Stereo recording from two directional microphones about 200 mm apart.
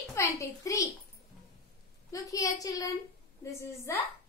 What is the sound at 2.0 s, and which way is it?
Speech, 15° left (ahead or behind).